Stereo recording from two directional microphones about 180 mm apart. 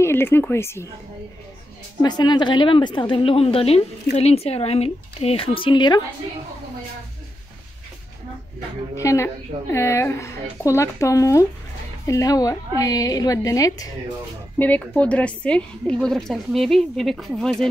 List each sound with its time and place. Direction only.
0.0 s speech: 15° left (ahead or behind)
2.0 s a woman's voice: 25° left (ahead or behind)
8.9 s a woman's voice: 15° left (ahead or behind)
14.6 s a woman's voice: 10° left (ahead or behind)